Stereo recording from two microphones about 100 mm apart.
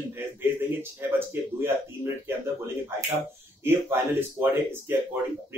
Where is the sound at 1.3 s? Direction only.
25° right (ahead or behind).